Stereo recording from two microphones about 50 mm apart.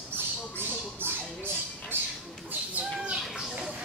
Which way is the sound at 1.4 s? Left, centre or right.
Right.